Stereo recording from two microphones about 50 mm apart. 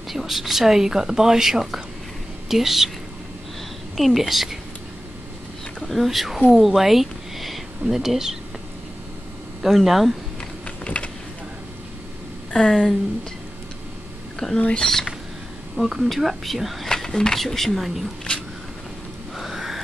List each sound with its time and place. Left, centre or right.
0.1 s a woman's voice: centre
3.9 s speech: centre
5.8 s a sound: centre
6.0 s speech: centre
6.5 s a sound: centre
7.8 s speech: centre
9.6 s speech: centre
10.8 s vehicle: left
12.5 s speech: centre
14.6 s speech: left
15.7 s speech: centre
16.9 s a sound: centre
17.4 s speech: centre
19.3 s a sound: centre